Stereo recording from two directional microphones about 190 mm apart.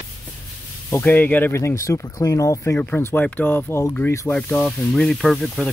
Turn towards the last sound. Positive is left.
turn(degrees=0)  # may be behind; listen again after turning